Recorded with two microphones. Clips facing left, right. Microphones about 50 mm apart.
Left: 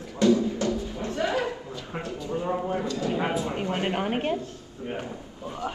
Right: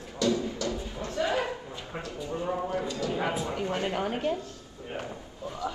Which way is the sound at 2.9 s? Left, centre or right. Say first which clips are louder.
Left 3 dB; left.